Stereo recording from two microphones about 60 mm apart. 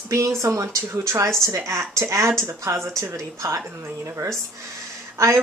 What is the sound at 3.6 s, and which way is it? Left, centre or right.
Speech, right.